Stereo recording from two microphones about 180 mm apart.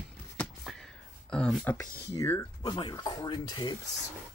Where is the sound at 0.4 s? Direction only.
5° left (ahead or behind).